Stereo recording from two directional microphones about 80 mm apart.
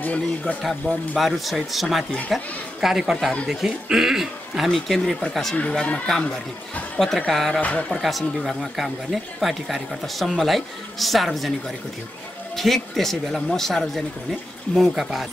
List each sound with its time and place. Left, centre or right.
0.0 s speech: centre
0.6 s speech: centre
5.6 s speech: centre
7.6 s speech: centre
8.0 s speech: centre
12.5 s speech: centre